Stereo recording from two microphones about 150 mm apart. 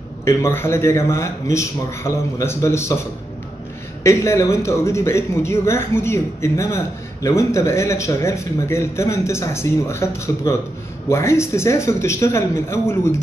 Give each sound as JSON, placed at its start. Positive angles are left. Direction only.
{"t": 0.2, "sound": "speech", "side_deg": 20}
{"t": 4.0, "sound": "speech", "side_deg": 20}